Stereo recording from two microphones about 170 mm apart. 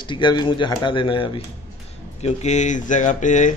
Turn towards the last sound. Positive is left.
turn(degrees=45)  # may be behind; listen again after turning